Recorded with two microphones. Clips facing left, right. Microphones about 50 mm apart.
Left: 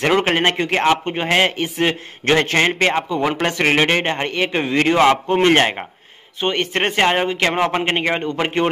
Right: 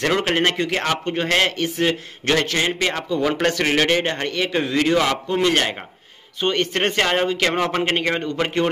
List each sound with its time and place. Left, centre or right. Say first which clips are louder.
0.2 s a man's voice: left 2 dB; left
2.9 s a man's voice: left 2 dB; left
6.4 s a man's voice: left 1 dB; left